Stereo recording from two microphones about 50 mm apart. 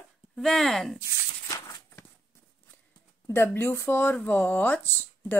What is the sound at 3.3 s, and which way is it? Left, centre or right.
Speech, left.